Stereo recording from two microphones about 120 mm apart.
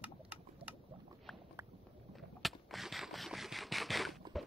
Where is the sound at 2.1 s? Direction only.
Centre (ahead or behind).